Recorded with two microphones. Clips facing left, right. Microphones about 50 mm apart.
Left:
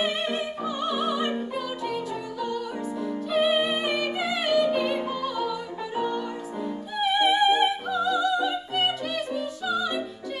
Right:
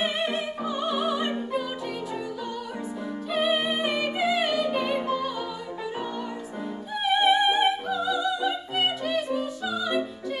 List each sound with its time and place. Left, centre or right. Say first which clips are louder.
0.0 s opera: even; centre
3.3 s music: left 2 dB; centre
7.0 s opera: even; centre